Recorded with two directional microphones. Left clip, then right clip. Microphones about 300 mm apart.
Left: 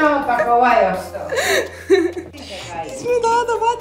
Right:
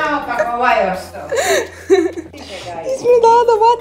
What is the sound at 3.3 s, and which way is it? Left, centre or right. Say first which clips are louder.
Speech: right 6 dB; centre.